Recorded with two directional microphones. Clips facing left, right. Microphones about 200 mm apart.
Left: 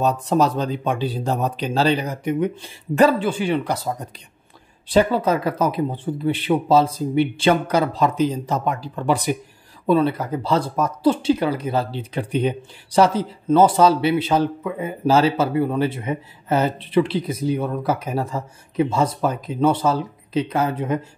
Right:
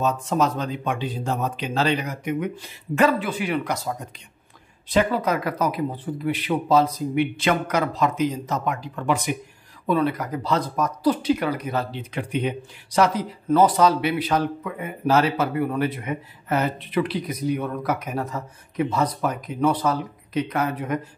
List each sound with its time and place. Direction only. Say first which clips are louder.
0.0 s speech: left 3 dB; 35° left (ahead or behind)